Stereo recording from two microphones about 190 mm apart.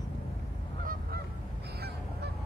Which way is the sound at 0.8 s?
45° right (ahead or behind).